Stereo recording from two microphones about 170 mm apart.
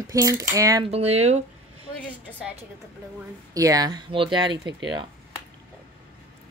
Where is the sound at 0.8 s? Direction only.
35° right (ahead or behind).